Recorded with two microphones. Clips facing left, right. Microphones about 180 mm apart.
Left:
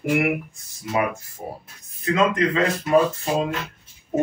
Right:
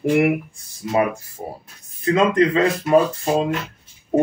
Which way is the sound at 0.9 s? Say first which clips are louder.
Right 4 dB; 35° right (ahead or behind).